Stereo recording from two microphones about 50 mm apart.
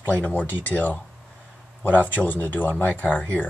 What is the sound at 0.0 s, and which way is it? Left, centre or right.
Speech, left.